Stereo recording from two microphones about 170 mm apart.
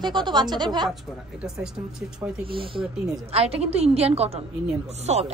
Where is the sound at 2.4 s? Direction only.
30° right (ahead or behind).